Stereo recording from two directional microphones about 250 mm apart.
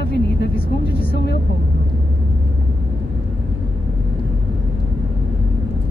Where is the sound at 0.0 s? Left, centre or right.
Left.